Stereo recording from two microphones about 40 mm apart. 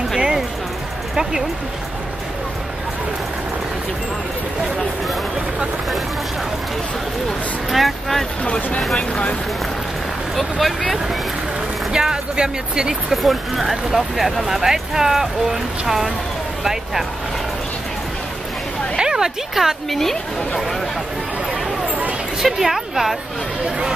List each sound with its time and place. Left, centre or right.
7.7 s speech: centre
8.5 s speech: left
10.3 s speech: centre
11.9 s speech: centre
13.1 s speech: centre
18.9 s a sound: centre
19.5 s speech: centre
20.0 s speech: centre
22.4 s speech: centre